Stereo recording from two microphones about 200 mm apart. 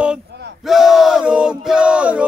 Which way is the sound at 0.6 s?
Centre (ahead or behind).